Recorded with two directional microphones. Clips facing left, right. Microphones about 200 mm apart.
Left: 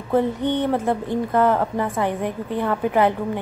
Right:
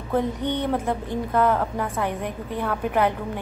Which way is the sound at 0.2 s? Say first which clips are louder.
Left 4 dB; 15° right (ahead or behind).